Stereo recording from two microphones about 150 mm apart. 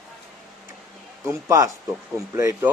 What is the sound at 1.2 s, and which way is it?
A man's voice, 20° right (ahead or behind).